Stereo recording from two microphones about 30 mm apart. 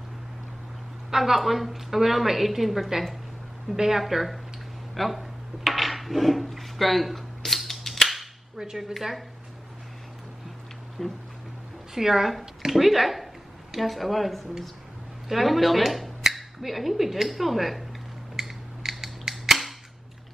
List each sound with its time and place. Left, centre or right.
1.1 s a woman's voice: centre
3.7 s a woman's voice: centre
4.1 s speech: centre
4.9 s dishes: centre
6.5 s a sound: centre
8.5 s a woman's voice: centre
11.0 s a sound: centre
11.9 s a woman's voice: centre
18.4 s mechanisms: centre
18.8 s scissors: centre